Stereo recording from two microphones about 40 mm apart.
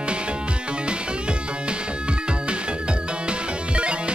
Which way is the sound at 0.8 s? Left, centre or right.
Right.